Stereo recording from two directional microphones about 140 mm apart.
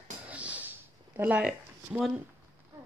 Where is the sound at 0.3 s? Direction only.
10° right (ahead or behind).